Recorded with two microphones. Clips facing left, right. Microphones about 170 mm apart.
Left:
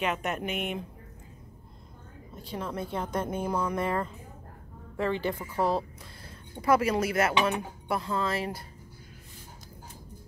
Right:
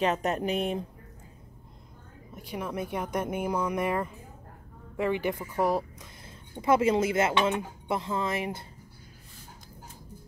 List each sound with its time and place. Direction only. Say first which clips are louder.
0.0 s speech: right 4 dB; 35° right (ahead or behind)
2.3 s speech: right 1 dB; 15° right (ahead or behind)